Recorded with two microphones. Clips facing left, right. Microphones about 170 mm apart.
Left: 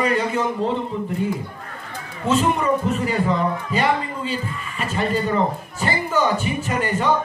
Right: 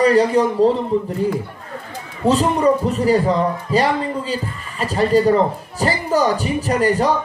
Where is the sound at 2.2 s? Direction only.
35° right (ahead or behind).